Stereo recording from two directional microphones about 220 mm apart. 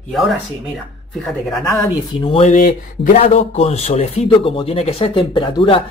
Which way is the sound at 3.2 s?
30° left (ahead or behind).